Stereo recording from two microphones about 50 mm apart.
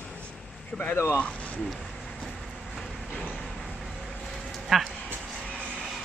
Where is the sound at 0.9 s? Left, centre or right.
Left.